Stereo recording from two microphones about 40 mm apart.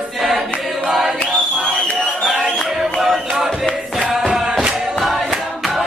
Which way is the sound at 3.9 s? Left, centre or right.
Centre.